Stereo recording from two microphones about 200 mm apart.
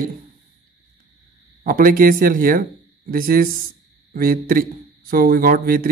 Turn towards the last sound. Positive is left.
turn(degrees=-45)  # may be behind; listen again after turning